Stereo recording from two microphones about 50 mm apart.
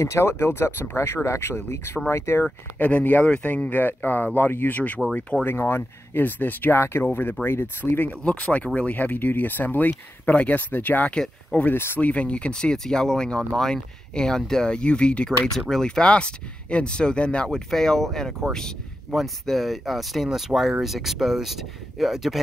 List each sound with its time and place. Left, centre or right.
0.0 s speech: left
2.8 s speech: left
5.4 s speech: left
6.8 s speech: left
11.7 s speech: left
12.0 s speech: left
12.7 s speech: centre